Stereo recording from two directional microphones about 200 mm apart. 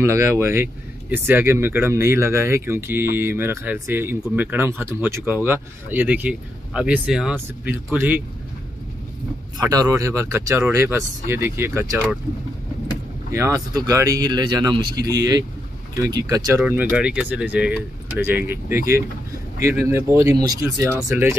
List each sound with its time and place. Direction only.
0.0 s speech: 15° right (ahead or behind)
9.6 s speech: 20° right (ahead or behind)
13.3 s speech: 15° right (ahead or behind)